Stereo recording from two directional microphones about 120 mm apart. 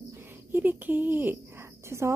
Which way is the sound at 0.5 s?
15° right (ahead or behind).